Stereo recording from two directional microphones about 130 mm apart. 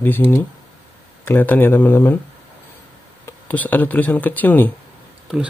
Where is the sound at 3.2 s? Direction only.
15° left (ahead or behind).